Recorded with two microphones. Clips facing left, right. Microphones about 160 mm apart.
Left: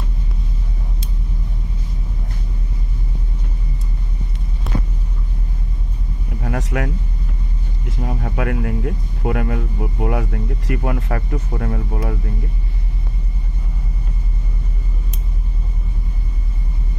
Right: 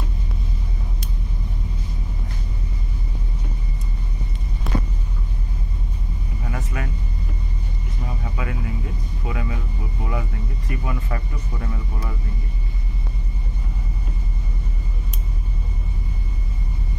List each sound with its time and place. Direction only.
6.4 s vehicle: 65° left (ahead or behind)
8.0 s vehicle: 60° left (ahead or behind)